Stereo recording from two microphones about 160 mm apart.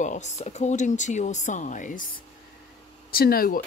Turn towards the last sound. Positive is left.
turn(degrees=65)  # may be behind; listen again after turning